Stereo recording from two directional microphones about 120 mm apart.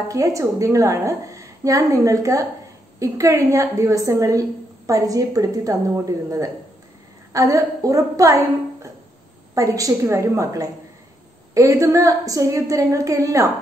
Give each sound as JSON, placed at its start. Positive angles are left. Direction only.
{"t": 0.1, "sound": "a woman's voice", "side_deg": -25}
{"t": 9.6, "sound": "a woman's voice", "side_deg": -30}